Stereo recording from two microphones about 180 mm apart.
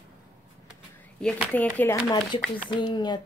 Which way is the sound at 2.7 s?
25° left (ahead or behind).